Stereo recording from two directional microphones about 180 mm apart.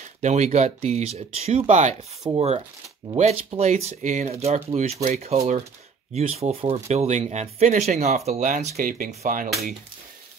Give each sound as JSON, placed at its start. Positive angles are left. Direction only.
{"t": 0.2, "sound": "speech", "side_deg": -40}